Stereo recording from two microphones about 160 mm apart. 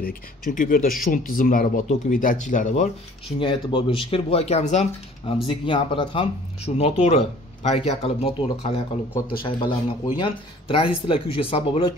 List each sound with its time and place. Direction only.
0.0 s speech: 60° left (ahead or behind)
3.3 s speech: 30° left (ahead or behind)
5.5 s speech: 30° left (ahead or behind)